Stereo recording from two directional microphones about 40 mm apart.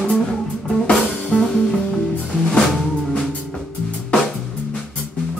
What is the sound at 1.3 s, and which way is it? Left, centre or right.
Music, left.